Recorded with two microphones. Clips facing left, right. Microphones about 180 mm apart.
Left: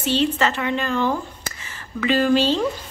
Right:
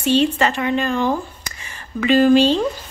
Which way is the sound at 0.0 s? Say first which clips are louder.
Right 4 dB; 15° right (ahead or behind).